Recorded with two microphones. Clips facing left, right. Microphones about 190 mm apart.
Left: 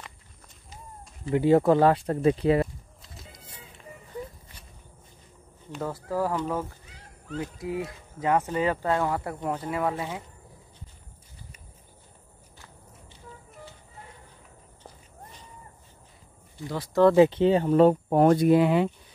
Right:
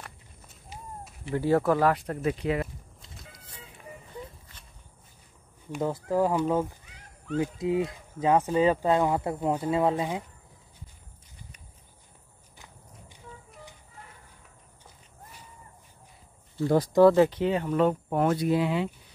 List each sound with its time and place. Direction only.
1.3 s speech: 20° left (ahead or behind)
5.7 s speech: 15° right (ahead or behind)
12.5 s walk: 15° right (ahead or behind)
16.6 s speech: 45° right (ahead or behind)
17.3 s speech: 30° left (ahead or behind); by 18.9 s 55° left (ahead or behind)